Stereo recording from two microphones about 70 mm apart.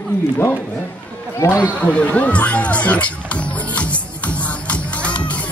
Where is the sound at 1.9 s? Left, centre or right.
Centre.